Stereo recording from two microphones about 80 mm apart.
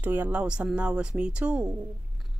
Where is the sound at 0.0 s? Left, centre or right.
Right.